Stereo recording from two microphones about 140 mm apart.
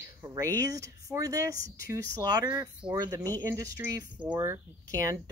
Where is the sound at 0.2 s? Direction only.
25° right (ahead or behind).